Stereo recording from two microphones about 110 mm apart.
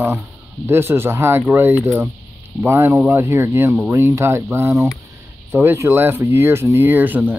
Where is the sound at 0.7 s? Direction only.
20° right (ahead or behind).